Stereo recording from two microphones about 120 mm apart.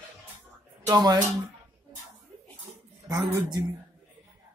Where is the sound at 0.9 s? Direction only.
30° right (ahead or behind).